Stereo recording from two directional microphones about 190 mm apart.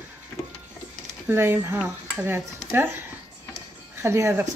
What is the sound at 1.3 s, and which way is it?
Speech, 10° right (ahead or behind).